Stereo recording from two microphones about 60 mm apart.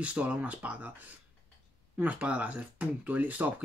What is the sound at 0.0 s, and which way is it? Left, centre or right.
Speech, right.